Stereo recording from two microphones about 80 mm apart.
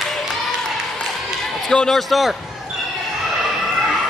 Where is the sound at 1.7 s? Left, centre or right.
Centre.